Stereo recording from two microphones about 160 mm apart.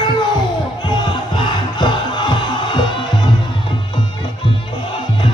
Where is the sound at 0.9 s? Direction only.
30° left (ahead or behind).